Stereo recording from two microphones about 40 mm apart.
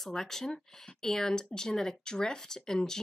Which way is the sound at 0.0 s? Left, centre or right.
Centre.